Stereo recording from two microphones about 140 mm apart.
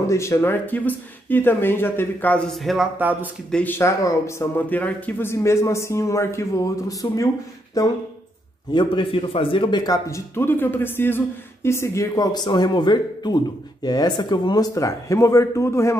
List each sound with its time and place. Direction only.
0.0 s speech: 20° left (ahead or behind); by 2.9 s centre (ahead or behind)
3.0 s speech: 10° right (ahead or behind)
3.5 s speech: 15° left (ahead or behind)
8.7 s speech: 35° left (ahead or behind); by 16.0 s 20° left (ahead or behind)